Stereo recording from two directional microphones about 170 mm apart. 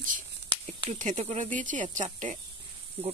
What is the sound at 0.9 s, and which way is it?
Speech, 45° right (ahead or behind).